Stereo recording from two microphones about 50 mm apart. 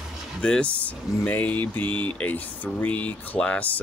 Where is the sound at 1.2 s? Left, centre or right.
Left.